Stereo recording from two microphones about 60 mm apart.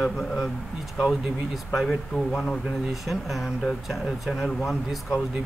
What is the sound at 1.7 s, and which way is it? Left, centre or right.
Speech, centre.